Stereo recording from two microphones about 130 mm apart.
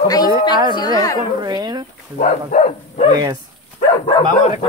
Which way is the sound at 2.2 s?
70° left (ahead or behind).